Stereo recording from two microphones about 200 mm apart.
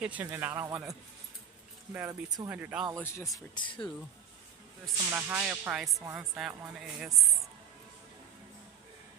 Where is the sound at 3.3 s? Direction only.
25° left (ahead or behind).